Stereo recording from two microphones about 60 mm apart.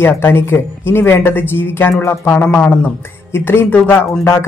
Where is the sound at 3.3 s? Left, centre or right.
Left.